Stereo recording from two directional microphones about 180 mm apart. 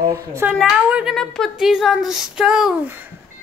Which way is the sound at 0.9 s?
5° right (ahead or behind).